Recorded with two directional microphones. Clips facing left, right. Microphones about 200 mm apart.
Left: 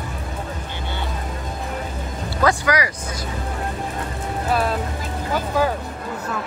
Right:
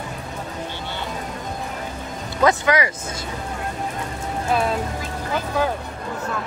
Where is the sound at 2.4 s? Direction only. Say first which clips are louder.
Right 1 dB; 25° right (ahead or behind).